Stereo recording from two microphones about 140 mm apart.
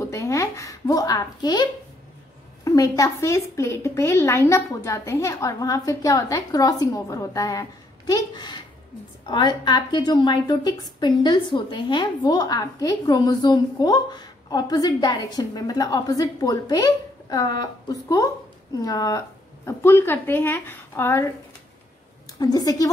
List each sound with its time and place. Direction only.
0.0 s a woman's voice: 20° left (ahead or behind)
22.4 s a woman's voice: 25° left (ahead or behind)